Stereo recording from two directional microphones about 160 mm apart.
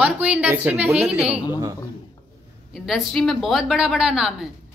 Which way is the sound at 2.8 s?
Centre (ahead or behind).